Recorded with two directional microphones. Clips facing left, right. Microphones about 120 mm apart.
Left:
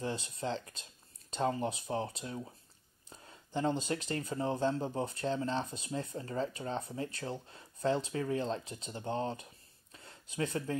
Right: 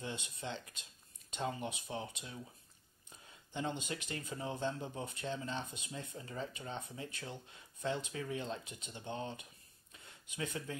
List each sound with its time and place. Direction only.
0.0 s speech: 35° left (ahead or behind)